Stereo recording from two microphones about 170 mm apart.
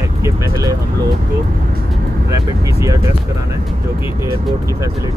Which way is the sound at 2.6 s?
20° right (ahead or behind).